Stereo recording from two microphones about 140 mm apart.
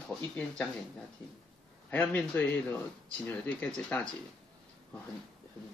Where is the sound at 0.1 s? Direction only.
5° left (ahead or behind).